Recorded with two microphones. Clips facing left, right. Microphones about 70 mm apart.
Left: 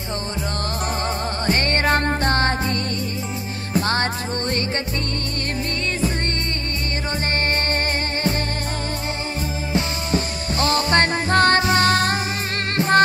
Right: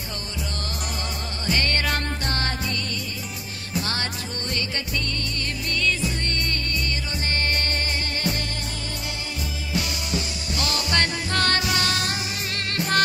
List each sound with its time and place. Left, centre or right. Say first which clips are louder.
1.4 s music: left 4 dB; left
9.7 s music: left 5 dB; left